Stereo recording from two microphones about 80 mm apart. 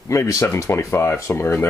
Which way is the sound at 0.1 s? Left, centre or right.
Left.